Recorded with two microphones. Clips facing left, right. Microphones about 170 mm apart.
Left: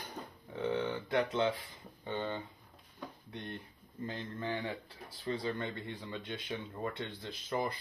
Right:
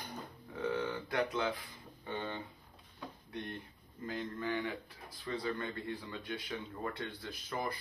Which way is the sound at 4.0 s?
30° left (ahead or behind).